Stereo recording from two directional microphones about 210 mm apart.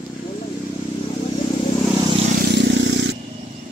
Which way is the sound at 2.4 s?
55° right (ahead or behind).